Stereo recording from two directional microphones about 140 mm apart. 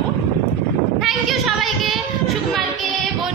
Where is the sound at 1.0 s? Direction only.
Centre (ahead or behind).